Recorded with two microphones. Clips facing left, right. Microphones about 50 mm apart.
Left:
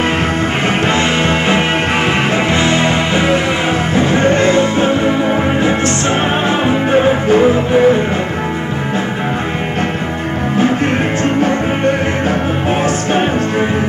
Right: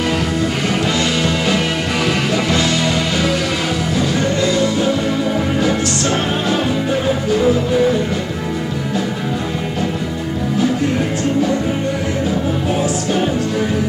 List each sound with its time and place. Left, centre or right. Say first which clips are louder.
0.9 s music: left 4 dB; left
11.2 s music: left 2 dB; left